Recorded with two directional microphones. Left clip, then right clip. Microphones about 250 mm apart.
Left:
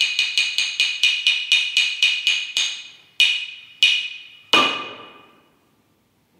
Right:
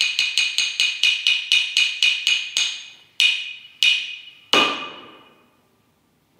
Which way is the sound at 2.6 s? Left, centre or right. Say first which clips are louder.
Even; centre.